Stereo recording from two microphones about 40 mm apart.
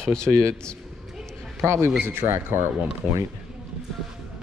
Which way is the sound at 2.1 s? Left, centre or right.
Right.